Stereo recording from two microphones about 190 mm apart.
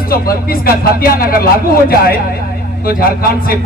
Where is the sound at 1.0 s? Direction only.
50° left (ahead or behind).